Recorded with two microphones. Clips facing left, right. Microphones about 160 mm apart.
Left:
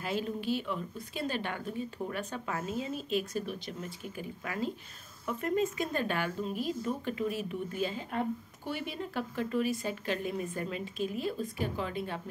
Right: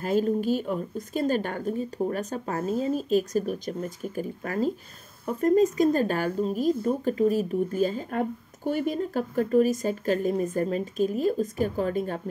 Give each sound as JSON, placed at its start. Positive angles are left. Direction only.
{"t": 0.0, "sound": "speech", "side_deg": -45}